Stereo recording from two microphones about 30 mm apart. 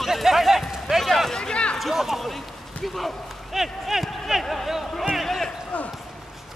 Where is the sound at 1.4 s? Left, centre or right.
Left.